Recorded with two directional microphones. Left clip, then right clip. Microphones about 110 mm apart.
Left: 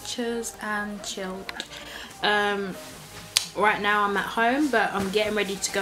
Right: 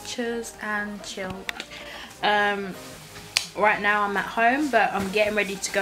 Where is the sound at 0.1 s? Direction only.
Centre (ahead or behind).